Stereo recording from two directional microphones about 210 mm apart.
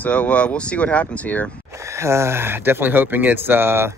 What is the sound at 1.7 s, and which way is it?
Speech, 15° right (ahead or behind).